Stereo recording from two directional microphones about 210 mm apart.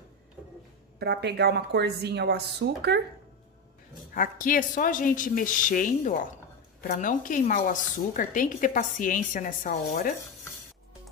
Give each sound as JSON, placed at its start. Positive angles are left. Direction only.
{"t": 0.9, "sound": "speech", "side_deg": -50}
{"t": 4.1, "sound": "a woman's voice", "side_deg": 40}